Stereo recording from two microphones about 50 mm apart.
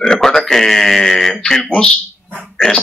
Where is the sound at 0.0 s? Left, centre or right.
Centre.